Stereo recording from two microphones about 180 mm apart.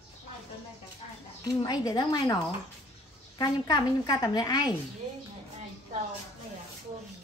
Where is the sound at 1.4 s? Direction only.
20° left (ahead or behind).